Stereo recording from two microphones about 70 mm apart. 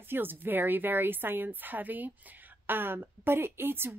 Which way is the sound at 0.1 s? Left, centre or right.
Right.